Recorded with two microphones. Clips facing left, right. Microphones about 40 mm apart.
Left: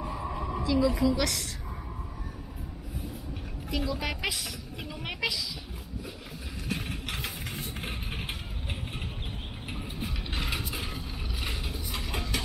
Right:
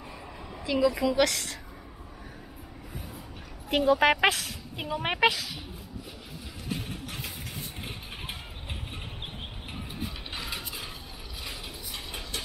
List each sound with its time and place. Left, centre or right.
0.1 s a sound: centre
0.7 s a woman's voice: right
3.7 s speech: right
4.7 s a woman's voice: right